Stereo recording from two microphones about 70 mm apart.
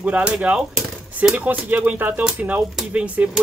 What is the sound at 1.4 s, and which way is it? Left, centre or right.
Speech, right.